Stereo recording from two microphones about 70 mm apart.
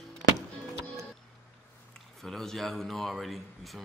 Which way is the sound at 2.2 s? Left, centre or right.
Centre.